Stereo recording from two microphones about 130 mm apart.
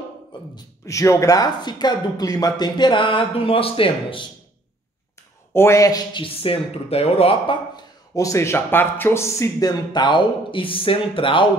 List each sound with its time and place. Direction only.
0.6 s speech: 25° left (ahead or behind); by 4.3 s 40° left (ahead or behind)
5.5 s speech: 20° left (ahead or behind)
6.2 s speech: 45° left (ahead or behind)
8.1 s speech: 25° left (ahead or behind); by 11.4 s 40° left (ahead or behind)